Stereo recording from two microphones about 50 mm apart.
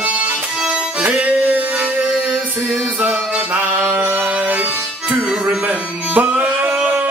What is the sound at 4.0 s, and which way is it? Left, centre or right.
Music, right.